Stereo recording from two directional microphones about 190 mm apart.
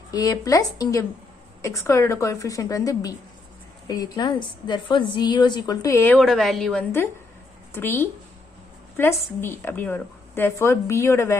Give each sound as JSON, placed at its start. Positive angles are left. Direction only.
{"t": 0.1, "sound": "a woman's voice", "side_deg": 20}
{"t": 6.1, "sound": "a woman's voice", "side_deg": 0}